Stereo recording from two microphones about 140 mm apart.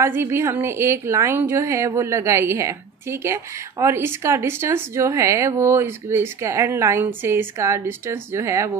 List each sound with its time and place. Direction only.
0.0 s a woman's voice: 15° right (ahead or behind)